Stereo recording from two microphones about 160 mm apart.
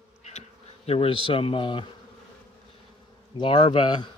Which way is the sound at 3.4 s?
35° left (ahead or behind).